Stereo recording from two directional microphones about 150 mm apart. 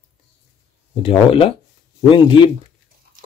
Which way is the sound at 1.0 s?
40° left (ahead or behind).